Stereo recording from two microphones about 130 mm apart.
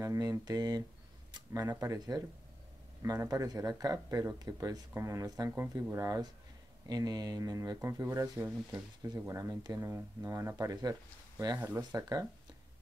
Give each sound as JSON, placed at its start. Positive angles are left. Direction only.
{"t": 0.0, "sound": "speech", "side_deg": -25}